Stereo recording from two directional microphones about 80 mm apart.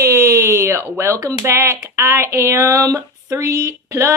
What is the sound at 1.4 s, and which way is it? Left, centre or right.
Speech, right.